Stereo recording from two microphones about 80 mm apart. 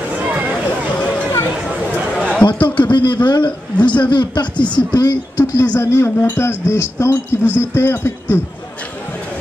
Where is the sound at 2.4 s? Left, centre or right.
Left.